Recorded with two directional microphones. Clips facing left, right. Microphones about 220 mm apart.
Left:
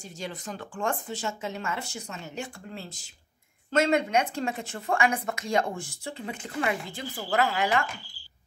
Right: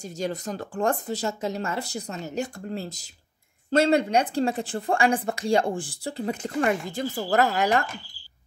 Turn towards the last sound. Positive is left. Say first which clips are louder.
# right 4 dB
turn(degrees=-40)  # may be behind; listen again after turning